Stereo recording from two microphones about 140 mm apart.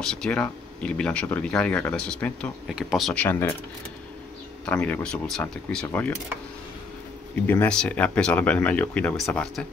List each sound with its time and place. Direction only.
0.0 s speech: 5° left (ahead or behind)
2.6 s speech: centre (ahead or behind)
3.2 s speech: 15° left (ahead or behind)
4.6 s speech: 10° left (ahead or behind)
7.4 s speech: 10° left (ahead or behind)